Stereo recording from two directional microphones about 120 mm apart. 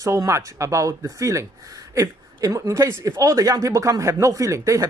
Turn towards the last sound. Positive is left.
turn(degrees=-25)  # may be behind; listen again after turning